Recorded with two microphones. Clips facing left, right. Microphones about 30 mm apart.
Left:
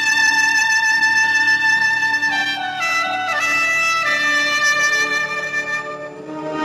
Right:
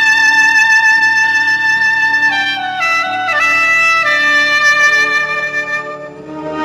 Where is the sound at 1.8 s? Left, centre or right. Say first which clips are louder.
Right 6 dB; right.